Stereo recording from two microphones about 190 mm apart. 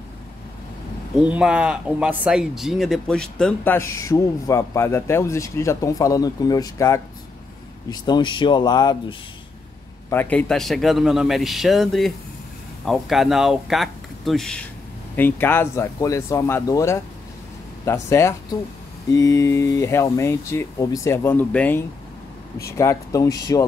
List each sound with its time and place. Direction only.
1.2 s speech: 5° right (ahead or behind); by 8.9 s 20° left (ahead or behind)
10.0 s a man's voice: 10° left (ahead or behind)